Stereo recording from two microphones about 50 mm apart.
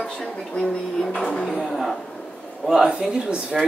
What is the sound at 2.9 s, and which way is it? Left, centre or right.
Speech, centre.